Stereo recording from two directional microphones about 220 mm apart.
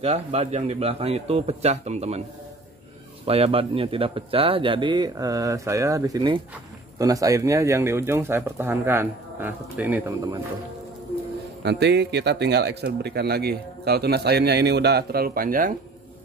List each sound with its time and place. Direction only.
0.0 s a man's voice: 30° right (ahead or behind)
3.3 s a man's voice: 25° right (ahead or behind)
11.6 s speech: 50° right (ahead or behind)